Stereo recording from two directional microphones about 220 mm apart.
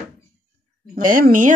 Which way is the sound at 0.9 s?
40° right (ahead or behind).